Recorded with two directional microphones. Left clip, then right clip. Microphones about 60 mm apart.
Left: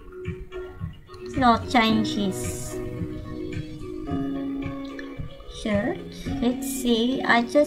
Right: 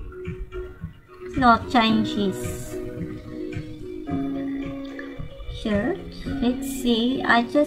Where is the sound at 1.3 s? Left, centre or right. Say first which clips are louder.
Right 2 dB; centre.